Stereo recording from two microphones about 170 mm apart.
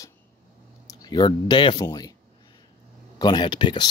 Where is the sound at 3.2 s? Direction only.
25° left (ahead or behind).